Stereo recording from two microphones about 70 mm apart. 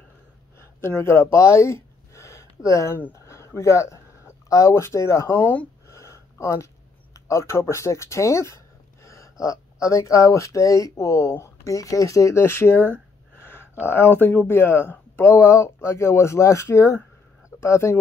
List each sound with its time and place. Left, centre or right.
0.7 s speech: left
5.3 s speech: left
5.9 s a sound: left
7.2 s speech: left